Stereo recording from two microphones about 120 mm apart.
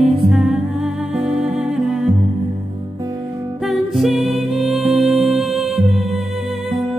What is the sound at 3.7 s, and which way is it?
Music, centre (ahead or behind).